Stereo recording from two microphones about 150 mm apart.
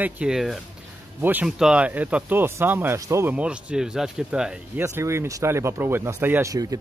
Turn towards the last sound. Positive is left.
turn(degrees=-15)  # may be behind; listen again after turning